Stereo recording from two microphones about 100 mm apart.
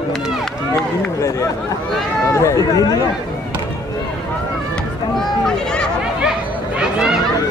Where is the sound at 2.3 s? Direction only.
30° left (ahead or behind).